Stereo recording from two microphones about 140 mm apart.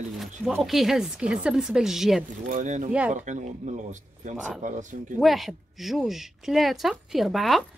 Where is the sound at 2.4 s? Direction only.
65° right (ahead or behind).